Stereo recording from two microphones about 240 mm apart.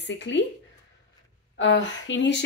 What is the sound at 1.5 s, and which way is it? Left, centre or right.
Speech, left.